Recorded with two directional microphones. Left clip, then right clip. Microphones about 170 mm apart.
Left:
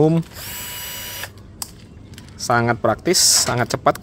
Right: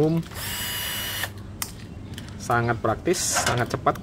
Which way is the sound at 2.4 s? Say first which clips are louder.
Left 6 dB; 60° left (ahead or behind).